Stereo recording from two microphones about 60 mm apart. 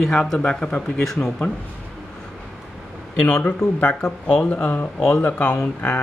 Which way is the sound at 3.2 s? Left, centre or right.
Left.